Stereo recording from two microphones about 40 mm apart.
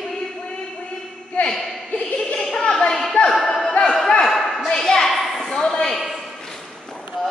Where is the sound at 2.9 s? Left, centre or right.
Centre.